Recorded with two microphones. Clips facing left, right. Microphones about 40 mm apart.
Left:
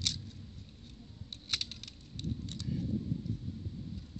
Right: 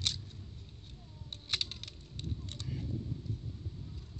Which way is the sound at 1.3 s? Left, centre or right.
Right.